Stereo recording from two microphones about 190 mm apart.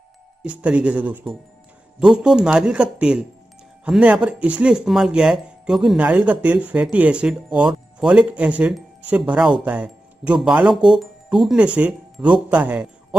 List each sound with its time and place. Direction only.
0.4 s speech: 5° right (ahead or behind)